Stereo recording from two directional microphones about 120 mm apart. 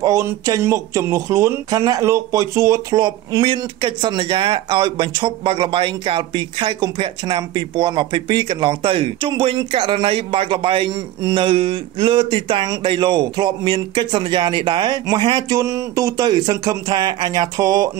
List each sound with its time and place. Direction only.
0.0 s speech: 25° right (ahead or behind)
3.0 s a man's voice: 40° right (ahead or behind)